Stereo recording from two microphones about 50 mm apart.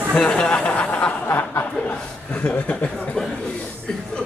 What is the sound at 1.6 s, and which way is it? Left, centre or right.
Speech, left.